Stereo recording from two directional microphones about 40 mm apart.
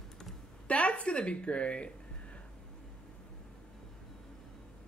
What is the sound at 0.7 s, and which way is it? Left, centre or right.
A woman's voice, left.